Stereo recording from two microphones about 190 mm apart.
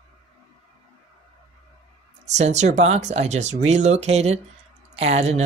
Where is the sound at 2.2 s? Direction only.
35° right (ahead or behind).